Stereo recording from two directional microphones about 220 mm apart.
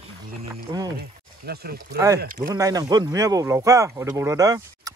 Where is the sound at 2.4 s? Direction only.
15° right (ahead or behind).